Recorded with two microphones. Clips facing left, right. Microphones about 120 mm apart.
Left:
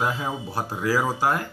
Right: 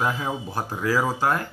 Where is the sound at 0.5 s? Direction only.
15° left (ahead or behind).